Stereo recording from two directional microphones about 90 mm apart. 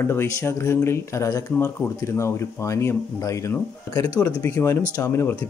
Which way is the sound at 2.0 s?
30° left (ahead or behind).